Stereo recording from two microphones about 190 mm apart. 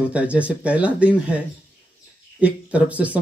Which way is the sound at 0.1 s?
5° right (ahead or behind).